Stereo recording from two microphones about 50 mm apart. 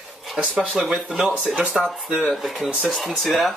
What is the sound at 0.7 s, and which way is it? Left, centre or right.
Speech, centre.